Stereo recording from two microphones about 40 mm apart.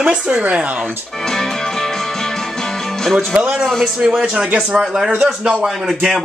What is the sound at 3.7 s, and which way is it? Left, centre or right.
Speech, centre.